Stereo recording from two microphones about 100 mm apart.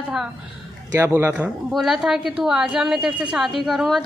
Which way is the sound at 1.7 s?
5° right (ahead or behind).